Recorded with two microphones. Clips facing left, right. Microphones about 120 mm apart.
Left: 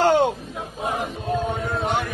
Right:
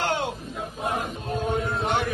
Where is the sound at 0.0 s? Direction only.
45° left (ahead or behind).